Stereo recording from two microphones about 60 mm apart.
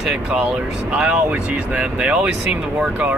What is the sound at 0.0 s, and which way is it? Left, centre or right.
Speech, centre.